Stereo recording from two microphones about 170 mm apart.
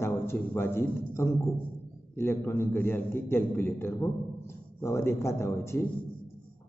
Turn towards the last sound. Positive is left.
turn(degrees=15)  # may be behind; listen again after turning